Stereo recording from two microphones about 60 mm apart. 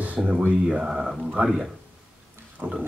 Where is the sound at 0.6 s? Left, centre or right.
Centre.